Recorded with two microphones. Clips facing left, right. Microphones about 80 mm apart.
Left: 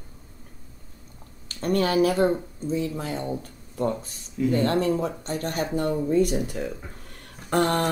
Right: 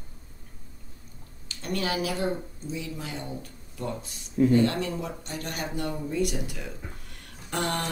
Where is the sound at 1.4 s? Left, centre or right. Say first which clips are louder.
Left 7 dB; left.